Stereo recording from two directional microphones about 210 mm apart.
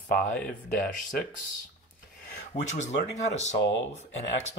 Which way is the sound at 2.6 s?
35° left (ahead or behind).